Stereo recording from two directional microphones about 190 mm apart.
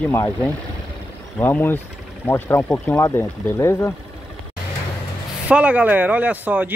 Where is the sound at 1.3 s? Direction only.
10° left (ahead or behind).